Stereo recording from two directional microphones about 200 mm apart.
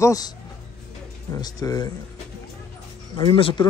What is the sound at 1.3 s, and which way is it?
Speech, 20° left (ahead or behind).